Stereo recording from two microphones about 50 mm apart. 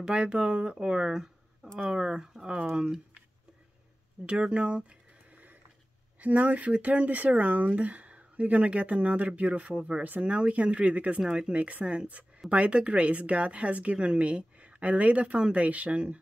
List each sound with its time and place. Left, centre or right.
0.0 s speech: centre
4.3 s a woman's voice: right
6.2 s a woman's voice: right
11.1 s a woman's voice: centre